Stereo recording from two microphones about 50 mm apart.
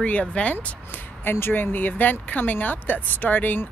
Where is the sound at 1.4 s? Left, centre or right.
Left.